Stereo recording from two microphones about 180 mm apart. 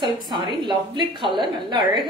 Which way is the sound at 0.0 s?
25° right (ahead or behind).